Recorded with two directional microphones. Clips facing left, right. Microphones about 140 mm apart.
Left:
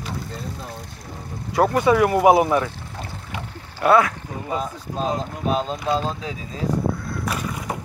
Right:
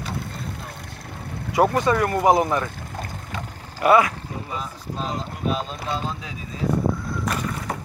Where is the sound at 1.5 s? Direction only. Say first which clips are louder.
Left 2 dB; 5° right (ahead or behind).